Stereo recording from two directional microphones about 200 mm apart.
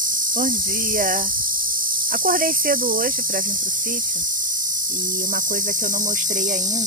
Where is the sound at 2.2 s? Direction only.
45° right (ahead or behind).